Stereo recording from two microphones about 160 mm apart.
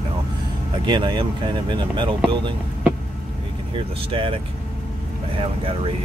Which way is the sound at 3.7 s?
35° right (ahead or behind).